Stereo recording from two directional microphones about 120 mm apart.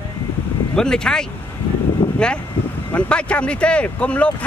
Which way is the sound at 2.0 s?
20° left (ahead or behind).